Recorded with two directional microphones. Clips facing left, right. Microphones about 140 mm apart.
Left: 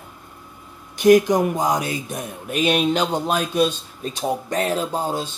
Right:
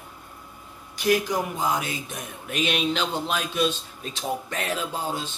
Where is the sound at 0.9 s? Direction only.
45° left (ahead or behind).